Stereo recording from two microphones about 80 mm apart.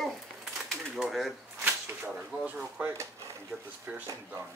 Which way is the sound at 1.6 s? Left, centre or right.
Right.